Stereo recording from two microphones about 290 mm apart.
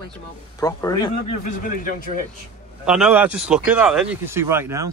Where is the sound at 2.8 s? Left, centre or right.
Centre.